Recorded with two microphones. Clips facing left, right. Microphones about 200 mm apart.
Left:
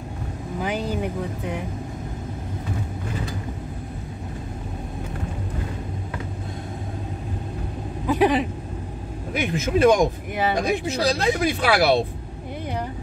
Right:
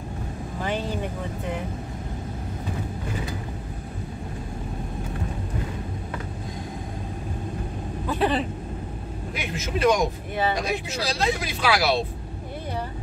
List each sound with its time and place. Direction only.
8.1 s vehicle: 10° left (ahead or behind)
9.3 s speech: 50° left (ahead or behind)